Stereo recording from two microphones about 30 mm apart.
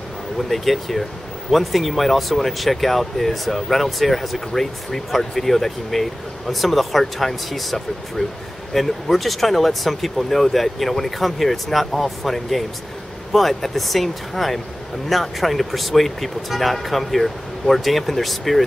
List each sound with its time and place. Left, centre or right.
0.4 s speech: centre
8.2 s speech: left
8.7 s speech: centre